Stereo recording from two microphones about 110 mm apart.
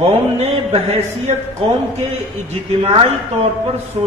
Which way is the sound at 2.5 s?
70° right (ahead or behind).